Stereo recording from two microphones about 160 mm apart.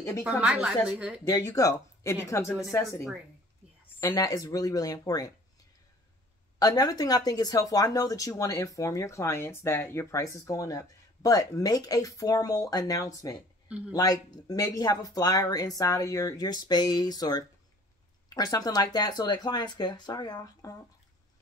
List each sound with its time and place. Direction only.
0.4 s a woman's voice: 5° right (ahead or behind)
1.2 s speech: 20° left (ahead or behind)
4.0 s speech: 20° left (ahead or behind)
6.6 s speech: 25° left (ahead or behind)
13.7 s speech: 5° right (ahead or behind)
13.9 s speech: 25° left (ahead or behind)